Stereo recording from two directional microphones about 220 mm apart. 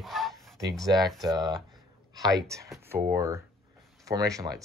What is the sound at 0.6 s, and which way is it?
Speech, centre (ahead or behind).